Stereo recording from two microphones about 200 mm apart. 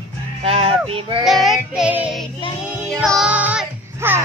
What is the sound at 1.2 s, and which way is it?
Child singing, centre (ahead or behind).